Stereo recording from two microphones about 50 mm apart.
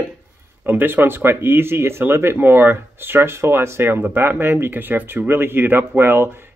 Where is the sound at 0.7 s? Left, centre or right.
Right.